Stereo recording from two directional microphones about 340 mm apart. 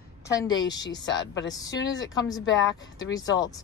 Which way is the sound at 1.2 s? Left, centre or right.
Left.